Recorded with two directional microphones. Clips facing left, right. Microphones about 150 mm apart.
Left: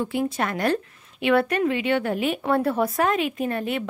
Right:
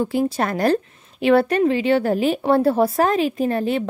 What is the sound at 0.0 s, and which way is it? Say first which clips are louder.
A woman's voice: right 4 dB; 35° right (ahead or behind).